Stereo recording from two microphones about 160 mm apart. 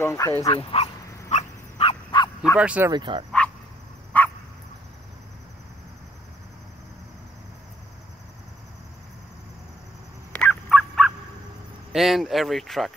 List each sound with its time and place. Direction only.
0.0 s speech: 20° left (ahead or behind)
0.6 s speech: 35° left (ahead or behind)
1.3 s dog: 40° left (ahead or behind)
2.0 s bow-wow: 25° left (ahead or behind)
2.5 s speech: 10° right (ahead or behind)
2.9 s speech: 30° right (ahead or behind)
4.1 s dog: 10° left (ahead or behind)
10.3 s dog: 10° left (ahead or behind)
11.9 s speech: centre (ahead or behind)